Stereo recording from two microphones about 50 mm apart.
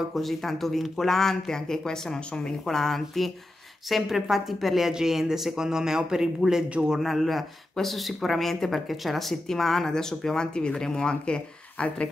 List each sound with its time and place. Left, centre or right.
0.1 s speech: centre
7.0 s speech: centre; by 12.1 s left